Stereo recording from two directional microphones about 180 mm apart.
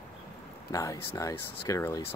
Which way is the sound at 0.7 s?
20° left (ahead or behind).